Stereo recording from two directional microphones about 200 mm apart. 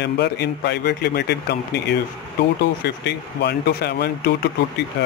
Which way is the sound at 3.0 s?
55° left (ahead or behind).